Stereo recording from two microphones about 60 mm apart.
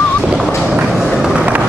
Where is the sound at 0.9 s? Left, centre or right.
Centre.